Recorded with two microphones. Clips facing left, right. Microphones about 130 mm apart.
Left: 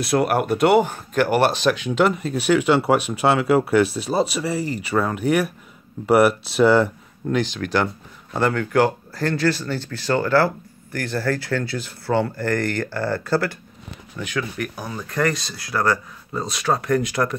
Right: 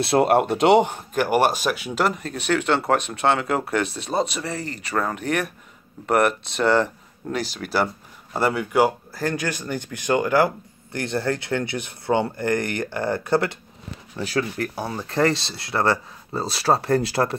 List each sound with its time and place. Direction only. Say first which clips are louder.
0.0 s speech: right 2 dB; 25° right (ahead or behind)
14.1 s speech: right 2 dB; 35° right (ahead or behind)